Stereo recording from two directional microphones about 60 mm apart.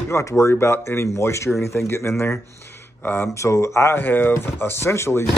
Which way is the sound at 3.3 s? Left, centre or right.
Left.